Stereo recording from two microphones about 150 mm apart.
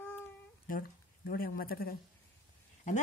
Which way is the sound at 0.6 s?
80° left.